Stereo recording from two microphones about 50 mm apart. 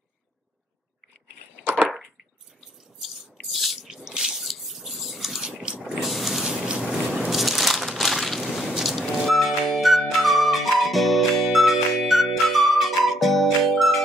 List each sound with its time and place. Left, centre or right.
3.5 s squish: centre
3.9 s drip: centre
5.4 s mechanisms: centre
5.9 s mechanisms: centre
6.4 s a sound: centre
6.8 s a sound: centre
8.8 s music: centre